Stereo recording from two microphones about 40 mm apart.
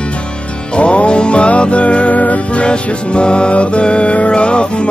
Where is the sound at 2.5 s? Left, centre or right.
Left.